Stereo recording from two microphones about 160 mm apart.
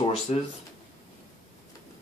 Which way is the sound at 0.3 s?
45° left (ahead or behind).